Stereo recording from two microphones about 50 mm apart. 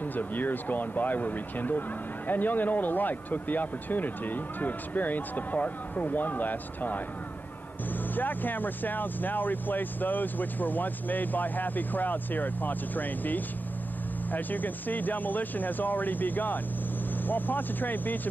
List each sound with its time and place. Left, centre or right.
0.0 s speech: left
8.1 s speech: left